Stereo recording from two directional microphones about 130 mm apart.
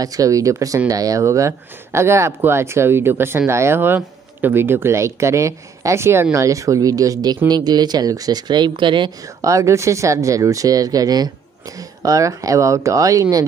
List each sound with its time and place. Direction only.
0.0 s speech: 25° right (ahead or behind)
9.4 s speech: 25° right (ahead or behind)